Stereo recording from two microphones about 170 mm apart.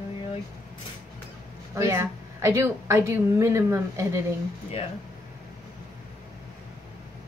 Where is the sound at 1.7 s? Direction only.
15° right (ahead or behind).